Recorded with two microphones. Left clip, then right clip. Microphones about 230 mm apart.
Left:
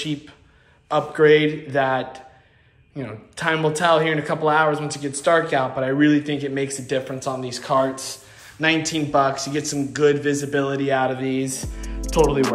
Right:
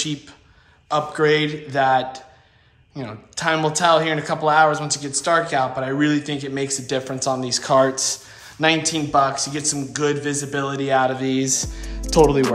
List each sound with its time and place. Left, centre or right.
0.8 s speech: centre; by 8.2 s right
8.5 s speech: centre